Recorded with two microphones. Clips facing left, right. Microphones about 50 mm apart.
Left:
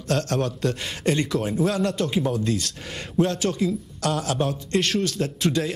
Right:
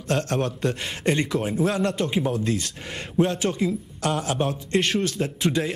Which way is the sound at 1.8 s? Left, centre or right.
Centre.